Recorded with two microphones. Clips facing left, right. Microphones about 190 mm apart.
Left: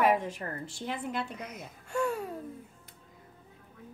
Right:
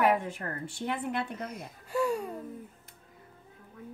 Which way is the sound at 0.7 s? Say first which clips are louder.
Right 6 dB; 60° right (ahead or behind).